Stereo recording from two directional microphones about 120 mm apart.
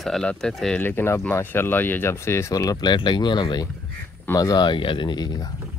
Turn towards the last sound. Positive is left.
turn(degrees=40)  # may be behind; listen again after turning